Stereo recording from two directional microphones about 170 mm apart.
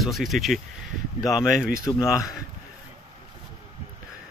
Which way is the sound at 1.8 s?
20° left (ahead or behind).